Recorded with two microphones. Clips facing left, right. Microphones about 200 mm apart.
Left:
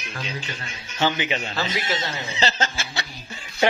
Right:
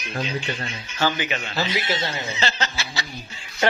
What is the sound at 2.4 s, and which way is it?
Snicker, 45° left (ahead or behind).